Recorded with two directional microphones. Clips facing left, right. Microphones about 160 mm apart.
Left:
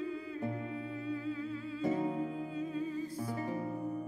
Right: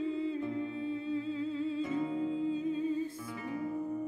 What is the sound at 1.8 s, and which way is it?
Music, 35° left (ahead or behind).